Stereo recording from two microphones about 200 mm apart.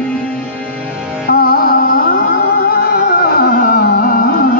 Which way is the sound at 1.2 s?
50° left (ahead or behind).